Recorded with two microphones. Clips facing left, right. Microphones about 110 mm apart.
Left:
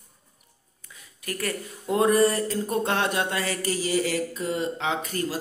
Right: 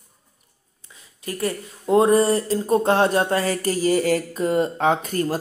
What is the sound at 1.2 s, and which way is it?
A man's voice, 25° right (ahead or behind).